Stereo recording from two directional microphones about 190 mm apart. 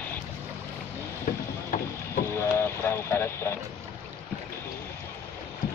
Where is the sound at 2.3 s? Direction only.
15° left (ahead or behind).